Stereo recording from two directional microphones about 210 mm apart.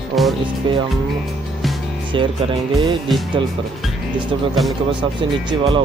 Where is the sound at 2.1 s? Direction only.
25° right (ahead or behind).